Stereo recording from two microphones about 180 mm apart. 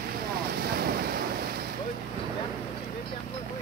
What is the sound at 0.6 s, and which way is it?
Waves, 60° right (ahead or behind).